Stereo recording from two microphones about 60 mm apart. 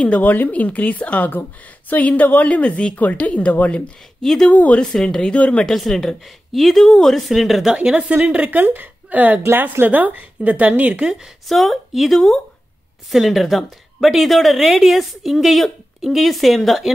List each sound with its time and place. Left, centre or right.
0.0 s a woman's voice: left
3.8 s speech: centre
4.5 s a woman's voice: left
4.9 s speech: centre
5.7 s a woman's voice: centre
7.7 s a woman's voice: centre
8.5 s a woman's voice: right
11.4 s a woman's voice: centre